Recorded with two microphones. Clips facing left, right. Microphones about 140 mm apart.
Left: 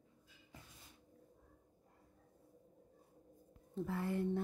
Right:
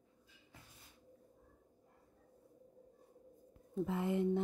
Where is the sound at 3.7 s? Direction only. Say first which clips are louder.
Right 3 dB; 15° right (ahead or behind).